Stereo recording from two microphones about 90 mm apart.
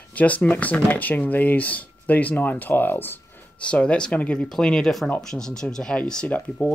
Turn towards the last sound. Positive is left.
turn(degrees=15)  # may be behind; listen again after turning